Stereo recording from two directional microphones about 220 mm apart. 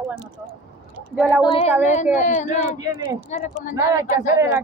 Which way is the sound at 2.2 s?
35° left (ahead or behind).